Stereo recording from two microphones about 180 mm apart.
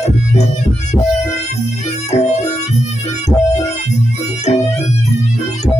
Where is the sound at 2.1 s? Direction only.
40° left (ahead or behind).